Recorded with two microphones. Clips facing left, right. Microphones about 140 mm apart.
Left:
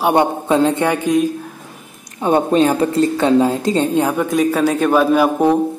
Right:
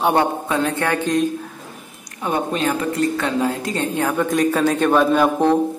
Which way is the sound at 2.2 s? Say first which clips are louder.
Left 8 dB; 30° left (ahead or behind).